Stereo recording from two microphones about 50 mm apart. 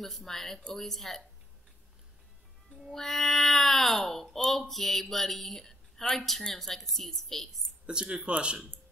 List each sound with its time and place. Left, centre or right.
0.0 s speech: centre
2.9 s speech: centre
7.8 s speech: right